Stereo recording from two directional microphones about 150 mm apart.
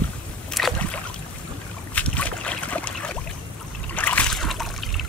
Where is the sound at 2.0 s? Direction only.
10° left (ahead or behind).